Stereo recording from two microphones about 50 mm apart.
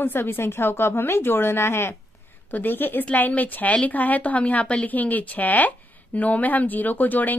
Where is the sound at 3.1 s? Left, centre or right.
Left.